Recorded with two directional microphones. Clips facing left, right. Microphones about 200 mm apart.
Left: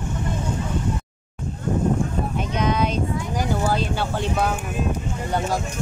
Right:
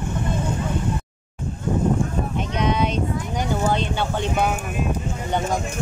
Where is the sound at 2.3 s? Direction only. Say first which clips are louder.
Even; centre (ahead or behind).